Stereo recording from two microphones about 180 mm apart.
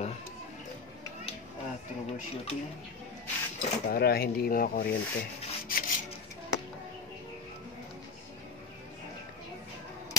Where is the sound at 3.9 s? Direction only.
60° left (ahead or behind).